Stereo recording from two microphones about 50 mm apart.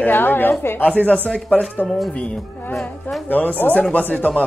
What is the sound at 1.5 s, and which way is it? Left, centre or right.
Speech, left.